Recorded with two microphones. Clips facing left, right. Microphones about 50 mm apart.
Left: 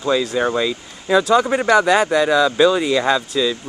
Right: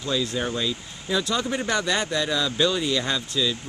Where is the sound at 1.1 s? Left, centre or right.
Left.